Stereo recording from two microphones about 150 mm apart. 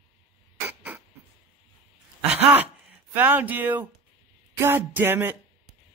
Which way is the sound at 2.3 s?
10° right (ahead or behind).